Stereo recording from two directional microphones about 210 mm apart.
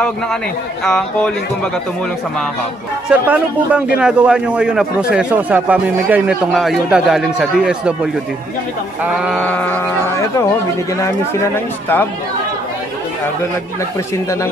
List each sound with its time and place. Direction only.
0.8 s speech: 5° left (ahead or behind)
3.1 s speech: 5° right (ahead or behind)
9.0 s sheep: 5° right (ahead or behind)